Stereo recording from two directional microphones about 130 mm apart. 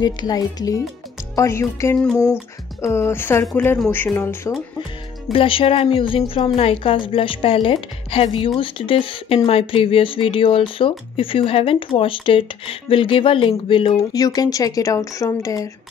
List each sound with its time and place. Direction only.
0.0 s a woman's voice: 30° left (ahead or behind)
5.3 s speech: 45° left (ahead or behind)
14.1 s speech: 30° left (ahead or behind)